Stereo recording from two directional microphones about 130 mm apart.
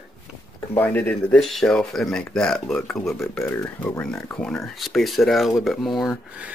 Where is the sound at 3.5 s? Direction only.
25° left (ahead or behind).